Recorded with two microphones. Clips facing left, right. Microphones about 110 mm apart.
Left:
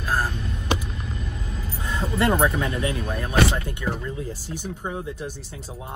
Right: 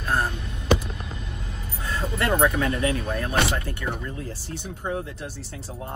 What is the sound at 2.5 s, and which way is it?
Speech, 25° left (ahead or behind).